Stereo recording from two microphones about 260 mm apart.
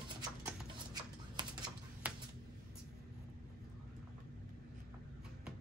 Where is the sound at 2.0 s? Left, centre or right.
Centre.